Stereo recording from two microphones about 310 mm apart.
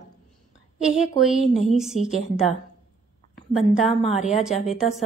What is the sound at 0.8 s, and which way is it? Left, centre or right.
Speech, centre.